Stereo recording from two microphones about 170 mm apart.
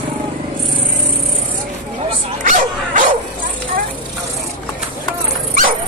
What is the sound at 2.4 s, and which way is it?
Dog, 50° right (ahead or behind).